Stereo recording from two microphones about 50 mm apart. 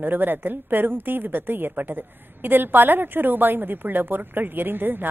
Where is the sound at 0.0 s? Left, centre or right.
Right.